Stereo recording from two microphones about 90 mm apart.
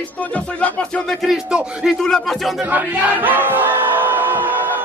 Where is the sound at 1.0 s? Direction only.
5° right (ahead or behind).